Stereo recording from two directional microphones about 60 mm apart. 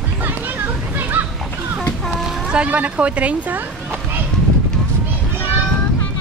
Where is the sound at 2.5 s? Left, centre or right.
Centre.